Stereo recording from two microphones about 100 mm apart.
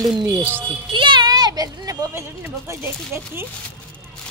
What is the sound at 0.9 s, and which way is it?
Speech, 50° right (ahead or behind).